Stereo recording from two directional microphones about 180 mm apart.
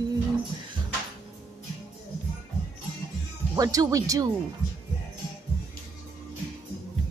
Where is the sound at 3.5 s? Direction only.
20° right (ahead or behind).